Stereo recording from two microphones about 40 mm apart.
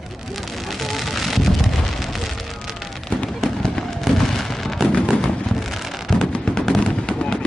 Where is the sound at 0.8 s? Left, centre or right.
Centre.